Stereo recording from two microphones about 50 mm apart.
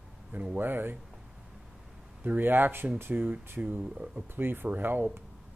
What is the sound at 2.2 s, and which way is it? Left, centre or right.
Speech, right.